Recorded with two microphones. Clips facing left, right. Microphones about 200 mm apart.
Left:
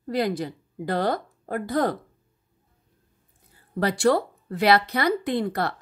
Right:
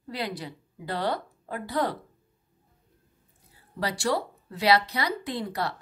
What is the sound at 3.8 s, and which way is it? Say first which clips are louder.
Speech: left 7 dB; 55° left (ahead or behind).